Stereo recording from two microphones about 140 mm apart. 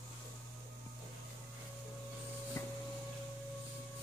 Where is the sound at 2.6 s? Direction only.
20° left (ahead or behind).